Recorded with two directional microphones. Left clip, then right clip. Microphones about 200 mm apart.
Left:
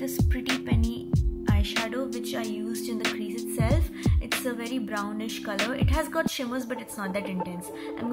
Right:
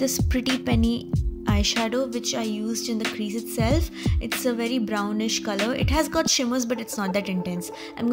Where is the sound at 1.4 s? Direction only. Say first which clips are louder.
Right 7 dB; 40° right (ahead or behind).